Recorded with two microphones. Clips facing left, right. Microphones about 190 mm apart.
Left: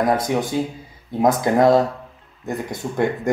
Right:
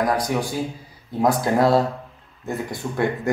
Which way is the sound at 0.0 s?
25° left (ahead or behind).